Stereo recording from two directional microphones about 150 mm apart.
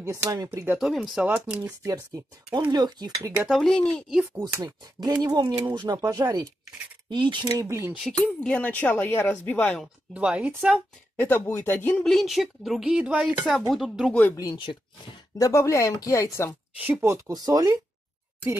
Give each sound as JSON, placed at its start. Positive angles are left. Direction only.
{"t": 0.0, "sound": "speech", "side_deg": -20}
{"t": 0.7, "sound": "speech", "side_deg": 0}
{"t": 1.6, "sound": "speech", "side_deg": -20}
{"t": 3.4, "sound": "speech", "side_deg": 0}
{"t": 4.4, "sound": "speech", "side_deg": -25}
{"t": 8.0, "sound": "speech", "side_deg": 10}
{"t": 10.1, "sound": "speech", "side_deg": -10}
{"t": 11.1, "sound": "speech", "side_deg": 15}
{"t": 12.0, "sound": "speech", "side_deg": 0}
{"t": 14.1, "sound": "speech", "side_deg": 10}
{"t": 14.4, "sound": "speech", "side_deg": 30}
{"t": 16.7, "sound": "speech", "side_deg": -10}
{"t": 17.1, "sound": "speech", "side_deg": -25}